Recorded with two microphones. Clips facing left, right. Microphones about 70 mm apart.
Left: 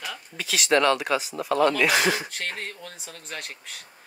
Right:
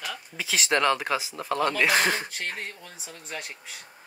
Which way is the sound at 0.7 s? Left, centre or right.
Centre.